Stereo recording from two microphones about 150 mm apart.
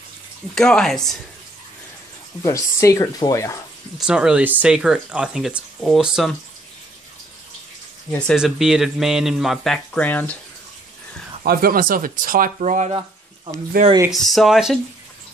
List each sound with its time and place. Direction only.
0.6 s speech: 5° left (ahead or behind)
2.4 s speech: 20° left (ahead or behind)
4.0 s speech: 5° right (ahead or behind)
8.3 s speech: centre (ahead or behind)
11.4 s speech: 75° right (ahead or behind)
14.3 s speech: centre (ahead or behind)